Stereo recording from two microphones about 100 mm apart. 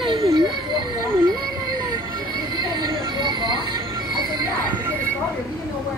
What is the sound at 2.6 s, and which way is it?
Music, 45° right (ahead or behind).